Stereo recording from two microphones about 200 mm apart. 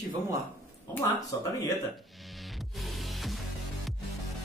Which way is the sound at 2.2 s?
Centre (ahead or behind).